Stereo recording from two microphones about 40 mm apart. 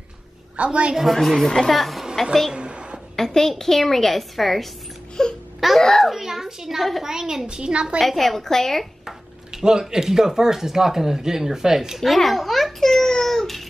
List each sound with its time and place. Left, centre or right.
0.6 s a woman's voice: right
1.1 s a woman's voice: centre
1.7 s a woman's voice: centre
2.5 s a sound: right
3.2 s a woman's voice: centre
5.2 s baby cry: centre
5.8 s babbling: centre
6.0 s a sound: centre
7.0 s speech: centre
7.4 s a woman's voice: right
8.0 s a woman's voice: centre
9.0 s speech: centre
12.0 s a sound: centre